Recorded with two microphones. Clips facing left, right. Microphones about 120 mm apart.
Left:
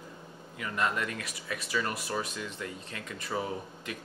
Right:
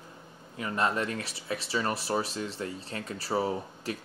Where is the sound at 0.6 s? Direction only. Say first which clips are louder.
Right 3 dB; 30° right (ahead or behind).